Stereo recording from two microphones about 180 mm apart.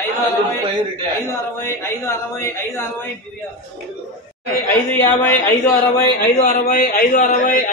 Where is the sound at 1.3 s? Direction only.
15° left (ahead or behind).